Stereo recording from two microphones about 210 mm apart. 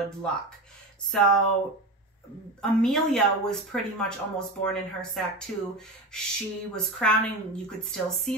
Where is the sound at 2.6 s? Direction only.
Centre (ahead or behind).